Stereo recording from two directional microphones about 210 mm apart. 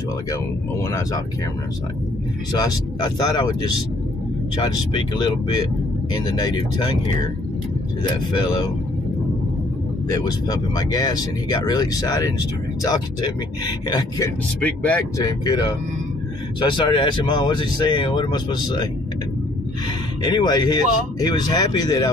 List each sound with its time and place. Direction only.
0.3 s speech: 15° left (ahead or behind)
2.5 s speech: 20° left (ahead or behind)
4.6 s speech: 20° left (ahead or behind)
8.0 s speech: 20° left (ahead or behind)
10.0 s speech: 15° left (ahead or behind)
14.6 s speech: 5° left (ahead or behind)
20.2 s speech: 20° left (ahead or behind)